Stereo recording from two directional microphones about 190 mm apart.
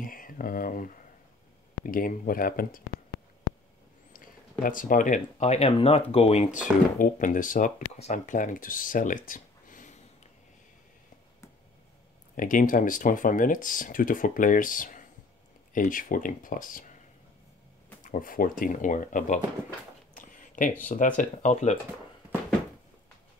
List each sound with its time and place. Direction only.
0.0 s a sound: 45° left (ahead or behind)
1.9 s speech: 45° left (ahead or behind)
4.6 s speech: 45° left (ahead or behind)
12.4 s speech: 45° left (ahead or behind)
18.0 s speech: 45° left (ahead or behind)
20.2 s a sound: 45° left (ahead or behind)
20.8 s speech: 45° left (ahead or behind)